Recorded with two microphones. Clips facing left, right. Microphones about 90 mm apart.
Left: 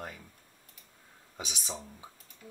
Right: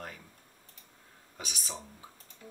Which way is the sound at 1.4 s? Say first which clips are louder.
Left 2 dB; 20° left (ahead or behind).